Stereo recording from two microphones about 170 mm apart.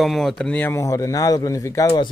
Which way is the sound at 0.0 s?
Centre (ahead or behind).